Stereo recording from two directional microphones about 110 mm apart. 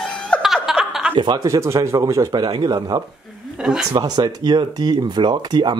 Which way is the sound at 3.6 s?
5° right (ahead or behind).